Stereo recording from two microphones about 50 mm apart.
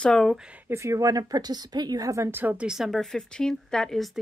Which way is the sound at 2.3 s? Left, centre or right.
Right.